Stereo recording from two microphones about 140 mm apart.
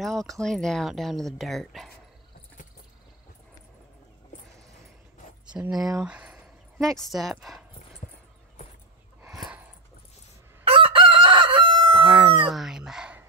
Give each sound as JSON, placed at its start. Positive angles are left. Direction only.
{"t": 0.0, "sound": "speech", "side_deg": 0}
{"t": 5.5, "sound": "speech", "side_deg": -5}
{"t": 6.8, "sound": "speech", "side_deg": 0}
{"t": 10.6, "sound": "chicken", "side_deg": -40}
{"t": 12.0, "sound": "chicken", "side_deg": 0}